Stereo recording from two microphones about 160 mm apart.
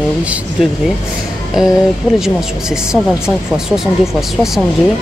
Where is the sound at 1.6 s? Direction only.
5° right (ahead or behind).